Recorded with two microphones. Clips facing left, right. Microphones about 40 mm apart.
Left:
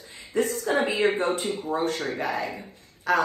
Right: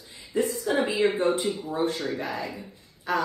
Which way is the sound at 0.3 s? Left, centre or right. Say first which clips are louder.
Left 1 dB; left.